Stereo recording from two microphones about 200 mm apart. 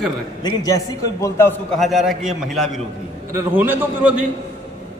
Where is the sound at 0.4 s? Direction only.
20° left (ahead or behind).